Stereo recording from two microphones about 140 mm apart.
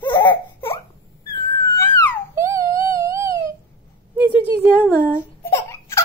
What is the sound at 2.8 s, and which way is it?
Theremin, 20° right (ahead or behind).